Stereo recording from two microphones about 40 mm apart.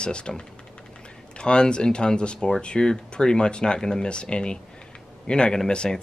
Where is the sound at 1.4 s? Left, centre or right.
Left.